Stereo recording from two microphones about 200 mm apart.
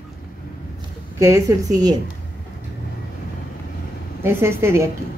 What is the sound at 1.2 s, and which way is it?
Speech, 15° right (ahead or behind).